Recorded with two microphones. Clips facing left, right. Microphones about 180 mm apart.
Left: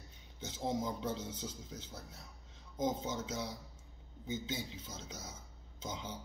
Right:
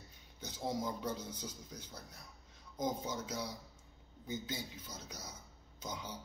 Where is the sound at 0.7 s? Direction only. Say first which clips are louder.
Left 1 dB; 25° left (ahead or behind).